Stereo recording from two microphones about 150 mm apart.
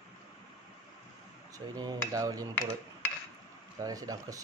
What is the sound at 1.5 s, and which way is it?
Speech, 25° right (ahead or behind).